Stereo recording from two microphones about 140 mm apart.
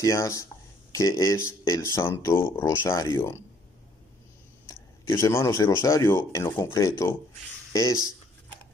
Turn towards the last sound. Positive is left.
turn(degrees=25)  # may be behind; listen again after turning